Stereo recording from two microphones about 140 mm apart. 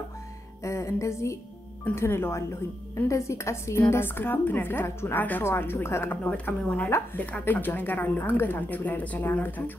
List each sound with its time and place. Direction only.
0.7 s music: 20° left (ahead or behind)
1.9 s a woman's voice: 20° left (ahead or behind)